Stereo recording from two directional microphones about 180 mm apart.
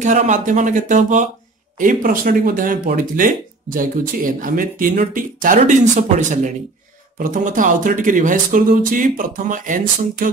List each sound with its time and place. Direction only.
0.0 s speech: 40° right (ahead or behind)